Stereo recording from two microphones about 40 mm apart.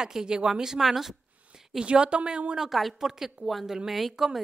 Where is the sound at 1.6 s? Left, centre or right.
Centre.